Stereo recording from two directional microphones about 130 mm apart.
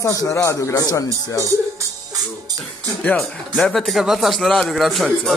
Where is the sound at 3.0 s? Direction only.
5° left (ahead or behind).